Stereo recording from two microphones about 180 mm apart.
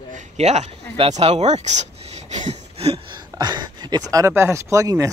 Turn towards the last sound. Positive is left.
turn(degrees=-20)  # may be behind; listen again after turning